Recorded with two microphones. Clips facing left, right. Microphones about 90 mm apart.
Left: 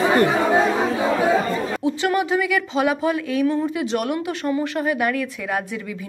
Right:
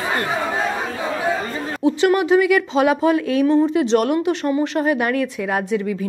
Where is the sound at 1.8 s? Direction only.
20° right (ahead or behind).